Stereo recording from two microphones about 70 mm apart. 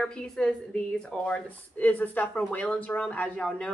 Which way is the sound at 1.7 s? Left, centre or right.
Left.